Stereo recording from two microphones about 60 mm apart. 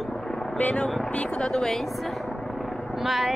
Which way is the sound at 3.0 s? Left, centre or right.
Centre.